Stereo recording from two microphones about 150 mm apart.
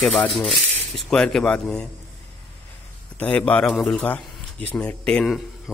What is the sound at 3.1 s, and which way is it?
A man's voice, 10° left (ahead or behind).